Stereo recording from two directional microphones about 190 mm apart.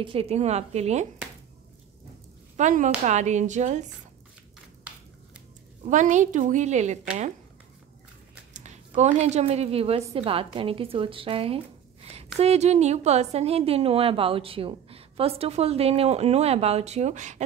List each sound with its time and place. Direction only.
0.0 s a woman's voice: 30° right (ahead or behind)
2.5 s a woman's voice: 40° right (ahead or behind)
5.9 s a woman's voice: 40° right (ahead or behind)
8.5 s a woman's voice: 40° right (ahead or behind)